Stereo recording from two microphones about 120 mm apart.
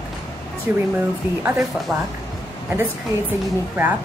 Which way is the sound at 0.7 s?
15° right (ahead or behind).